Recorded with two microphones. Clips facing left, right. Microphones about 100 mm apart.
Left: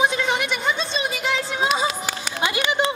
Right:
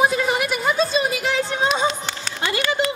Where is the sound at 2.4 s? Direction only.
20° left (ahead or behind).